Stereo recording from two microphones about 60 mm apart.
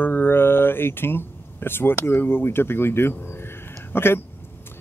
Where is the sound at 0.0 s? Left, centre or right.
Left.